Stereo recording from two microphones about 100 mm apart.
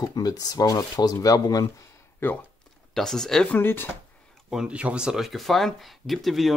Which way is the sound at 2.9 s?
5° left (ahead or behind).